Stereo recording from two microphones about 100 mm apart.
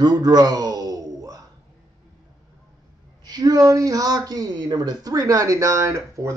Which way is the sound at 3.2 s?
40° right (ahead or behind).